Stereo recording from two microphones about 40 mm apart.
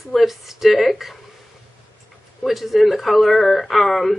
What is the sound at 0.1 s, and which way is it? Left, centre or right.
Speech, centre.